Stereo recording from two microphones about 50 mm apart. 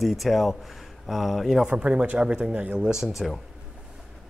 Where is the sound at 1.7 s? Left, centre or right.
Right.